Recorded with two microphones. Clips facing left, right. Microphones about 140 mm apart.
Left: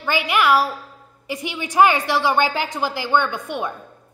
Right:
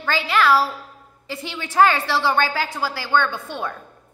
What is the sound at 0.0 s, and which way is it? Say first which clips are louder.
A woman's voice: even; 15° left (ahead or behind).